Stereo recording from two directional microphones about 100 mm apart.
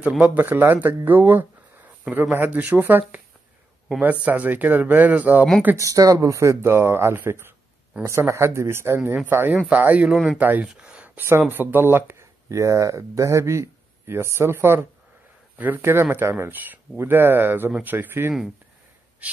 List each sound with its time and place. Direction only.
0.2 s speech: 15° right (ahead or behind)
5.8 s speech: 35° right (ahead or behind); by 10.1 s 15° right (ahead or behind)
10.1 s speech: 5° right (ahead or behind)
10.4 s speech: 15° right (ahead or behind)
10.7 s a sound: 10° right (ahead or behind)
11.5 s speech: 20° right (ahead or behind)